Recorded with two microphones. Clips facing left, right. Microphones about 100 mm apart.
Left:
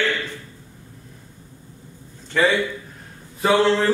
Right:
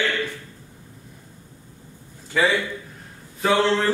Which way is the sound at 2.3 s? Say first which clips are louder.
Left 2 dB; 5° right (ahead or behind).